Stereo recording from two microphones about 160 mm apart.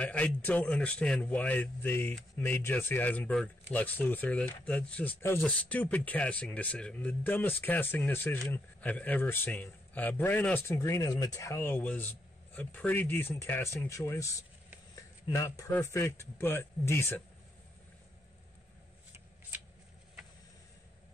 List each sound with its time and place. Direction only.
0.0 s speech: 10° left (ahead or behind)